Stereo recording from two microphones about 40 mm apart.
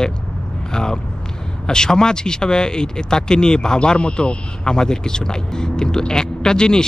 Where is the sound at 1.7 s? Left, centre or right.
Centre.